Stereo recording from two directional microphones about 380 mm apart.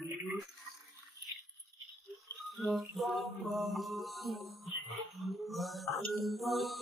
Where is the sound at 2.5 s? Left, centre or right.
Centre.